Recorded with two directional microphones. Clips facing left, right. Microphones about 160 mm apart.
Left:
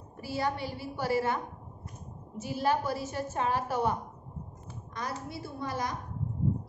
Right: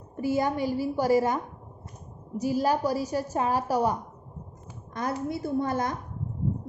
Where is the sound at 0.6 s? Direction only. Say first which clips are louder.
Right 9 dB; 45° right (ahead or behind).